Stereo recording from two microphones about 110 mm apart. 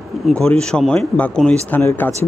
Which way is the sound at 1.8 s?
20° left (ahead or behind).